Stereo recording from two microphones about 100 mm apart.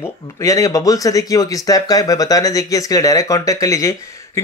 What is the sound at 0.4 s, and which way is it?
Speech, 35° left (ahead or behind).